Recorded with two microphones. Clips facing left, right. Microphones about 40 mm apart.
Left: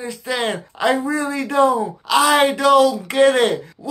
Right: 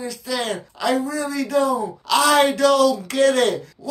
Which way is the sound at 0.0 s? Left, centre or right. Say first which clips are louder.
Left 3 dB; left.